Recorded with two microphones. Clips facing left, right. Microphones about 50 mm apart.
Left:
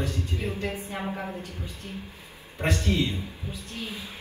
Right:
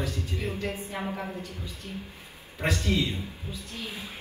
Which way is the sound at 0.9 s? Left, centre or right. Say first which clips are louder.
Left 1 dB; centre.